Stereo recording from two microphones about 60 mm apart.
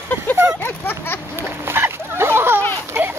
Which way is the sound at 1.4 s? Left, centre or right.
Right.